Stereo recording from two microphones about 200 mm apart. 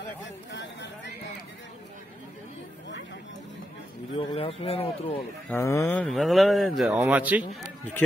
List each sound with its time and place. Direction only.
0.5 s a sound: 60° left (ahead or behind)
4.2 s speech: 25° left (ahead or behind)
5.5 s speech: 15° left (ahead or behind); by 7.4 s 10° right (ahead or behind)